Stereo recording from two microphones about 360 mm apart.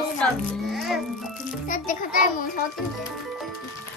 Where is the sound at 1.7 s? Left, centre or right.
Left.